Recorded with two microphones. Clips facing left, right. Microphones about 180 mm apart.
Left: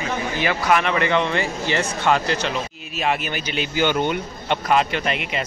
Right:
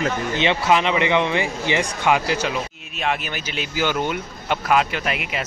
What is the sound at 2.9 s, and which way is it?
Speech, centre (ahead or behind).